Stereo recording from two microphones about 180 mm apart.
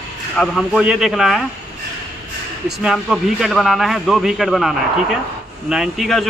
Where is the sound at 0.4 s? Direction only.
Centre (ahead or behind).